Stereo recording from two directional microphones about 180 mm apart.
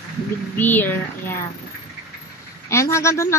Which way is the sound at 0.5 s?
10° left (ahead or behind).